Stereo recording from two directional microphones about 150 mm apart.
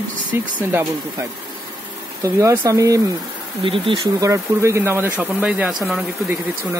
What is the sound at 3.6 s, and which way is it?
Speech, 35° right (ahead or behind).